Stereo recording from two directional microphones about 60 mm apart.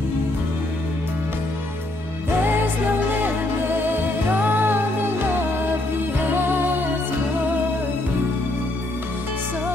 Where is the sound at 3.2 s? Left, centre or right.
Right.